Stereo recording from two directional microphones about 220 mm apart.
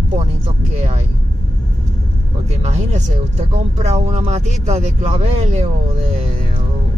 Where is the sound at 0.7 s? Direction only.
30° right (ahead or behind).